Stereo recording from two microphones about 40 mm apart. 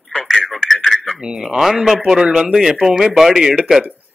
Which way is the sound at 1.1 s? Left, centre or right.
Centre.